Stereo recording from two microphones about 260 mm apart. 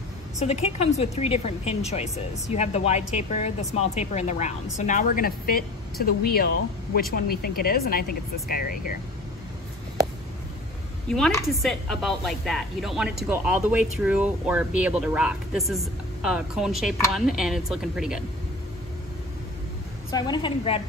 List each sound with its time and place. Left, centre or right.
0.4 s speech: left
11.1 s speech: centre
20.1 s a woman's voice: centre